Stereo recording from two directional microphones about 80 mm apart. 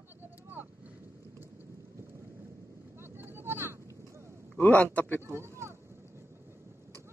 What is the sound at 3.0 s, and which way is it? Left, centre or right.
Vehicle, right.